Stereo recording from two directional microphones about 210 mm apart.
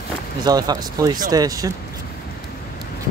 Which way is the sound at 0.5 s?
20° right (ahead or behind).